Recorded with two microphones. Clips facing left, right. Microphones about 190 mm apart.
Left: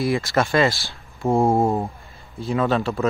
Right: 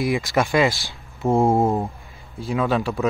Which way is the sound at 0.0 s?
15° right (ahead or behind).